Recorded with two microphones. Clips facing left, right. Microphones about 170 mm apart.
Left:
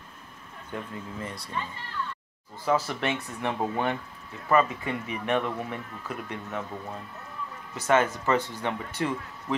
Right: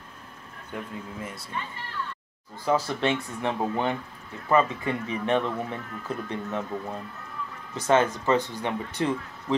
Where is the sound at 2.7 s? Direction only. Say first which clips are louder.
Right 2 dB; 20° right (ahead or behind).